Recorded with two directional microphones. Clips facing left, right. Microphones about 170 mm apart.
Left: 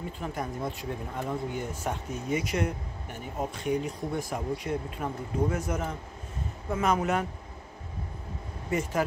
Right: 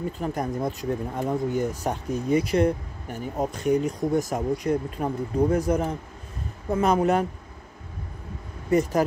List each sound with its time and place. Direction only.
0.2 s speech: 40° right (ahead or behind)
8.6 s speech: 40° right (ahead or behind)